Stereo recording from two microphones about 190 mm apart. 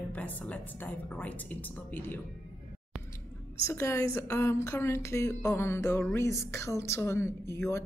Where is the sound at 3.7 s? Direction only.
15° left (ahead or behind).